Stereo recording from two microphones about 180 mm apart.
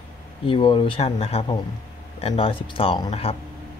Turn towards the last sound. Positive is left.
turn(degrees=30)  # may be behind; listen again after turning